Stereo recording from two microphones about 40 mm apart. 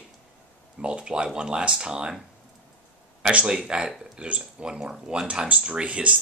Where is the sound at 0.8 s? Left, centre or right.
Right.